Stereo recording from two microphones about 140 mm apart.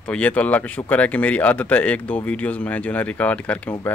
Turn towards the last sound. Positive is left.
turn(degrees=10)  # may be behind; listen again after turning